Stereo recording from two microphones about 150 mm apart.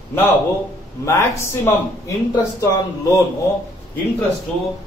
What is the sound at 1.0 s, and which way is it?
A man's voice, 20° left (ahead or behind).